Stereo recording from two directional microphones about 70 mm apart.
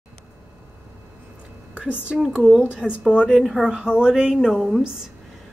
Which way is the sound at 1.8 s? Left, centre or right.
Centre.